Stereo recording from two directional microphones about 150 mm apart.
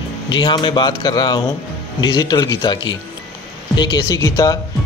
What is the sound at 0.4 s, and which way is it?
Speech, 30° left (ahead or behind).